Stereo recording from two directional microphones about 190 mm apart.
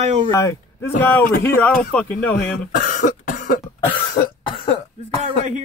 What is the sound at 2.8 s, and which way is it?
Cough, 45° left (ahead or behind).